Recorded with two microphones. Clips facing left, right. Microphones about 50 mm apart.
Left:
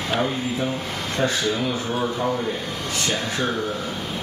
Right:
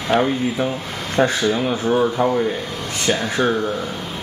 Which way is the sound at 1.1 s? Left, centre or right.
Right.